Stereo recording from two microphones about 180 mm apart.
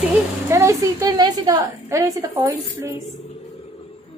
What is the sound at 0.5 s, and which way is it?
A woman's voice, 15° right (ahead or behind).